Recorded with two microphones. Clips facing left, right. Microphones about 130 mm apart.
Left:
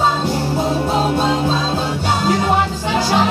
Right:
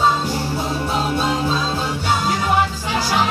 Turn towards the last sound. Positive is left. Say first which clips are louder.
# left 4 dB
turn(degrees=25)  # may be behind; listen again after turning